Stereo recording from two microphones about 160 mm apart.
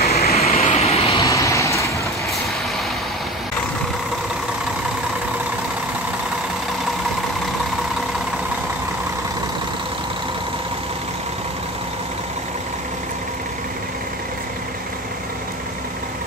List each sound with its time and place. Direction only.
0.0 s vehicle: 75° left (ahead or behind)
0.3 s vehicle: 40° left (ahead or behind)
1.2 s vehicle: 20° left (ahead or behind)